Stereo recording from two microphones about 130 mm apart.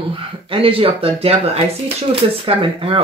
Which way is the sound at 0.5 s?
45° right (ahead or behind).